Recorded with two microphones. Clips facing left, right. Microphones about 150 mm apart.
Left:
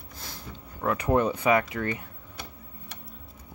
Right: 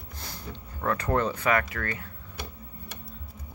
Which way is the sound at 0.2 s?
5° left (ahead or behind).